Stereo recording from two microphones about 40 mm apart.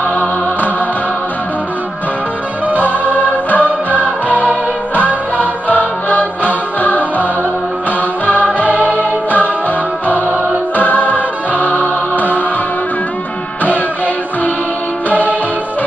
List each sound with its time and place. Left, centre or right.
2.8 s music: left
4.9 s music: left
8.3 s music: left
10.8 s music: left
13.7 s music: left